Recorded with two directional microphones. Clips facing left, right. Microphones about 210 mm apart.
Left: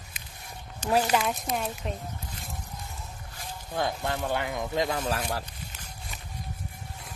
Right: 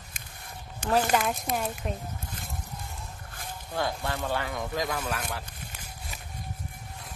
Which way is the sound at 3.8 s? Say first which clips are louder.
Left 1 dB; 20° left (ahead or behind).